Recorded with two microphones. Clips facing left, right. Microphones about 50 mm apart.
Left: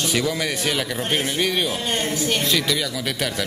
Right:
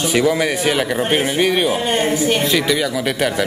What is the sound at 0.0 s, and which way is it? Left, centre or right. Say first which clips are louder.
A man's voice: right 7 dB; centre.